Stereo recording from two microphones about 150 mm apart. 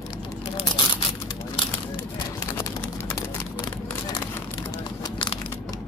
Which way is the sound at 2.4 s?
20° left (ahead or behind).